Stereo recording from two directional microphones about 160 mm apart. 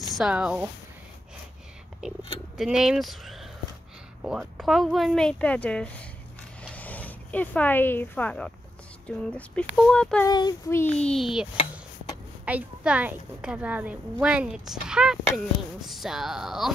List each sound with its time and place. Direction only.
0.0 s speech: centre (ahead or behind)
2.0 s speech: 5° right (ahead or behind)
10.2 s speech: 25° left (ahead or behind)
10.8 s speech: 5° left (ahead or behind)
12.4 s a woman's voice: 10° right (ahead or behind)